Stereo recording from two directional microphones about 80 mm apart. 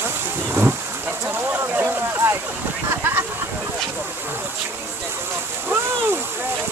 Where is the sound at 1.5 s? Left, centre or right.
Right.